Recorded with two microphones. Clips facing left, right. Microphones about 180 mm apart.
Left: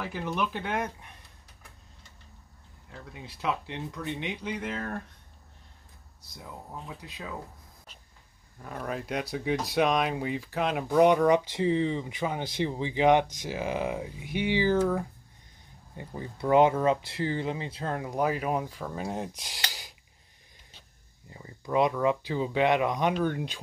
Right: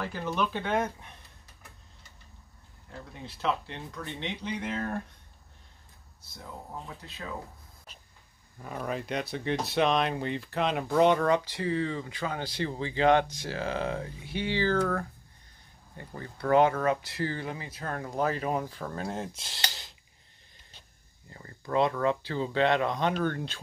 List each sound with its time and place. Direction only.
0.0 s speech: 10° left (ahead or behind)
3.1 s speech: 10° left (ahead or behind)
7.0 s speech: 15° left (ahead or behind)
8.6 s speech: centre (ahead or behind); by 18.0 s 25° left (ahead or behind)
18.0 s speech: 10° left (ahead or behind)
21.3 s speech: 10° left (ahead or behind)